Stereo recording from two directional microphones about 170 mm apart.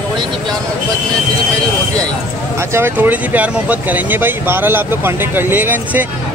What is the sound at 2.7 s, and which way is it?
Speech, 10° right (ahead or behind).